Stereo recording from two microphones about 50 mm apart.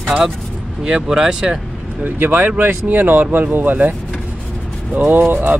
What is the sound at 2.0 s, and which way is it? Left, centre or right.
Speech, right.